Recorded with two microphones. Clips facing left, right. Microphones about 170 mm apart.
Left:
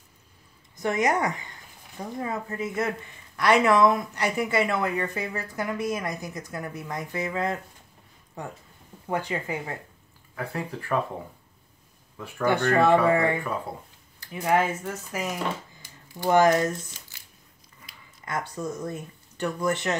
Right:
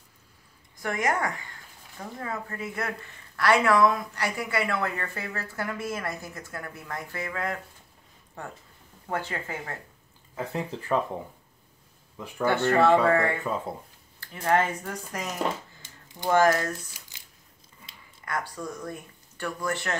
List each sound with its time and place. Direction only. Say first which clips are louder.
0.7 s speech: left 3 dB; 20° left (ahead or behind)
9.1 s speech: left 3 dB; 15° left (ahead or behind)
10.3 s speech: right 1 dB; 20° right (ahead or behind)
12.2 s speech: even; 15° right (ahead or behind)
13.0 s speech: left 1 dB; 15° left (ahead or behind)
15.8 s a sound: left 1 dB; 25° right (ahead or behind)
16.3 s speech: left 2 dB; 20° left (ahead or behind)
17.1 s a sound: left 1 dB; 20° right (ahead or behind)
18.2 s speech: left 2 dB; 20° left (ahead or behind)